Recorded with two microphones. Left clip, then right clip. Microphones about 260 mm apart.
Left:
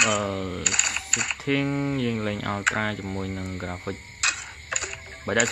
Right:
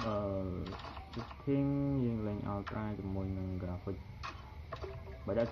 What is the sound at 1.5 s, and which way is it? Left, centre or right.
Speech, left.